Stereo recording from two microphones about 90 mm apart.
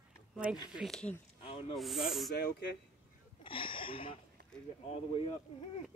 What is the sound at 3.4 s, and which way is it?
Speech, 75° left (ahead or behind).